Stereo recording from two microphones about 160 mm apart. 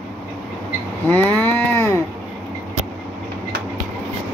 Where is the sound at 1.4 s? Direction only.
15° left (ahead or behind).